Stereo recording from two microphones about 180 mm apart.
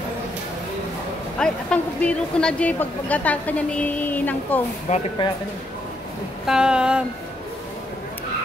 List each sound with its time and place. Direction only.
1.4 s a woman's voice: 5° left (ahead or behind)
4.9 s speech: 40° left (ahead or behind)
6.4 s a sound: 5° right (ahead or behind)